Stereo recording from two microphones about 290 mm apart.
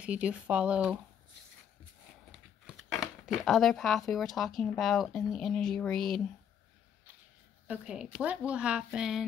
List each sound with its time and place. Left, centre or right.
0.0 s speech: centre
2.6 s speech: centre
7.6 s speech: centre